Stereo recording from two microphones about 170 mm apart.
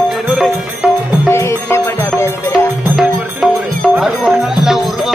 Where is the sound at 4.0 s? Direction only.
5° right (ahead or behind).